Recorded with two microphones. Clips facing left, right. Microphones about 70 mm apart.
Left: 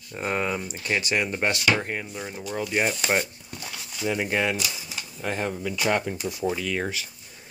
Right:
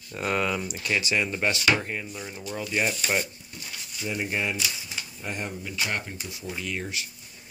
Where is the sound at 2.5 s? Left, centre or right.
Left.